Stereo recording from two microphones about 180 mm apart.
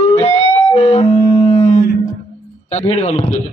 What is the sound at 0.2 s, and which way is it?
Music, 35° left (ahead or behind).